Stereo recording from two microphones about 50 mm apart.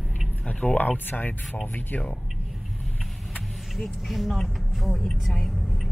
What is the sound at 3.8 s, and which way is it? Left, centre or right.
Speech, centre.